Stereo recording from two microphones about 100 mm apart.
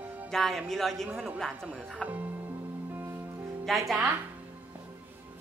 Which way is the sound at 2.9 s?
20° right (ahead or behind).